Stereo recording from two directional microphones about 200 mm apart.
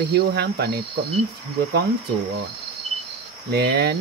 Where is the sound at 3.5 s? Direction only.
55° right (ahead or behind).